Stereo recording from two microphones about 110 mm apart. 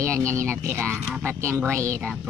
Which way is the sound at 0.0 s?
25° right (ahead or behind).